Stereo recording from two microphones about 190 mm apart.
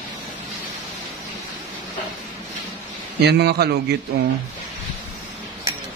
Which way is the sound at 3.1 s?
60° right (ahead or behind).